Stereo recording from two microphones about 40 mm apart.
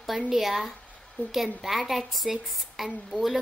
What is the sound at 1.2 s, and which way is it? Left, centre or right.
Speech, left.